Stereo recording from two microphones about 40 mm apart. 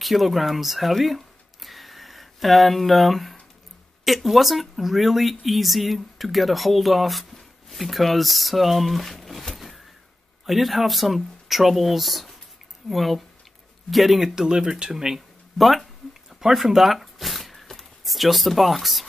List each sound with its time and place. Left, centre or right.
0.0 s speech: centre
14.3 s speech: centre
16.3 s a sound: centre
18.0 s speech: centre